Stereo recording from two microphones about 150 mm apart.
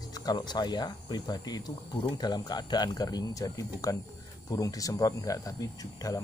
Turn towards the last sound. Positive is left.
turn(degrees=25)  # may be behind; listen again after turning